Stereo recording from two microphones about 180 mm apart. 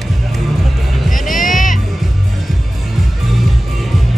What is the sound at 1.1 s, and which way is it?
Music, 50° left (ahead or behind).